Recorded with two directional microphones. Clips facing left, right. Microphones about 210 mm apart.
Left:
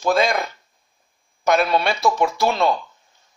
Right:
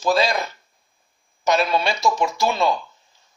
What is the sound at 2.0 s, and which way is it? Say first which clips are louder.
Speech: left 2 dB; 55° left (ahead or behind).